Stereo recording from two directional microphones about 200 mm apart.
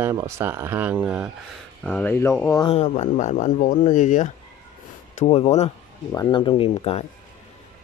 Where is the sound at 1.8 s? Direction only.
5° left (ahead or behind).